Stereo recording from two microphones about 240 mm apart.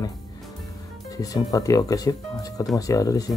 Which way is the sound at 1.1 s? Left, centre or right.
Centre.